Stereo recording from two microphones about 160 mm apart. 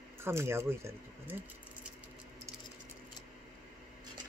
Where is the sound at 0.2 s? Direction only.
15° right (ahead or behind).